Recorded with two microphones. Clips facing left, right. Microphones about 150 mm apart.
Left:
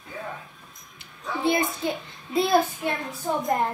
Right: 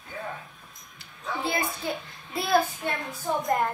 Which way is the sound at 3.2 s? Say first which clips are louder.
Left 1 dB; centre (ahead or behind).